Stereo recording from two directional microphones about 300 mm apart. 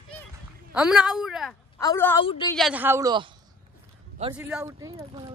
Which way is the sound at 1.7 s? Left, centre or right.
Centre.